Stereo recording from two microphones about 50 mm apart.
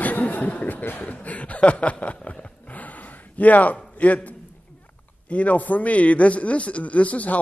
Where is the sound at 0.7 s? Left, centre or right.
Left.